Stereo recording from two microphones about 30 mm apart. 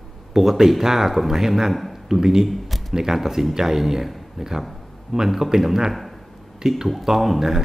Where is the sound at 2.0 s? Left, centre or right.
Centre.